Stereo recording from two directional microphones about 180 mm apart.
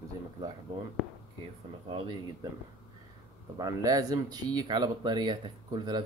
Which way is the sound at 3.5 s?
20° right (ahead or behind).